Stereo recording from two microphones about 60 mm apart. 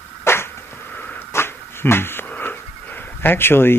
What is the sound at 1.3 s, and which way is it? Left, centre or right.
Dog, left.